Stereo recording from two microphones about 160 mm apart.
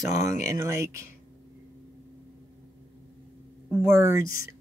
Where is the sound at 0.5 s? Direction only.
20° right (ahead or behind).